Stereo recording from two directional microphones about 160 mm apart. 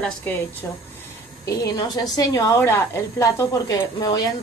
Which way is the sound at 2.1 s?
25° left (ahead or behind).